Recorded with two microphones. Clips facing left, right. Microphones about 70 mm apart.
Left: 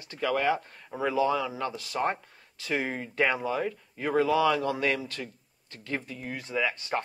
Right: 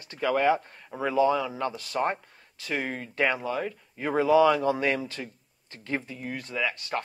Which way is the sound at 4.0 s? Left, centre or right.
Centre.